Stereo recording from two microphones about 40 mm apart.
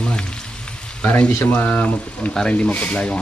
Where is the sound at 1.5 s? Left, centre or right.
Left.